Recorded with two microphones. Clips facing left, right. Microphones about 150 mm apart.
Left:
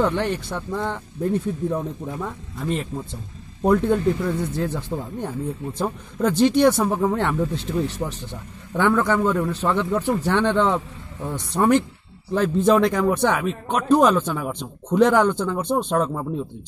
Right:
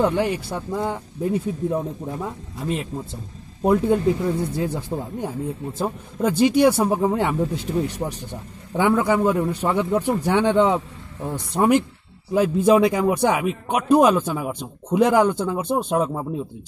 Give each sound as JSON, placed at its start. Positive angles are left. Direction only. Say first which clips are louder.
{"t": 0.0, "sound": "a man's voice", "louder": "right 1 dB", "side_deg": -10}
{"t": 1.8, "sound": "speech", "louder": "right 1 dB", "side_deg": -20}
{"t": 2.6, "sound": "a man's voice", "louder": "even", "side_deg": -5}